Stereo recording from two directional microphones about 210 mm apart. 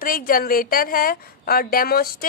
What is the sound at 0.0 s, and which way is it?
A woman's voice, 45° left (ahead or behind).